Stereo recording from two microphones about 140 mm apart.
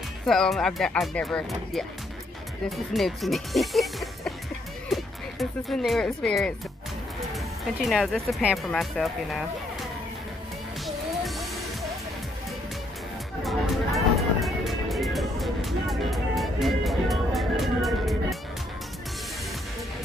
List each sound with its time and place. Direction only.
0.3 s speech: 5° left (ahead or behind)
2.9 s speech: centre (ahead or behind)
13.4 s music: centre (ahead or behind)